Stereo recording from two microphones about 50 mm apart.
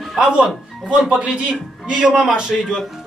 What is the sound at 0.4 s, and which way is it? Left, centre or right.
A man's voice, centre.